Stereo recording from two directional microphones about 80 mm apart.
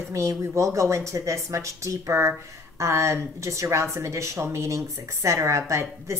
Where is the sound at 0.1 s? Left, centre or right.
Right.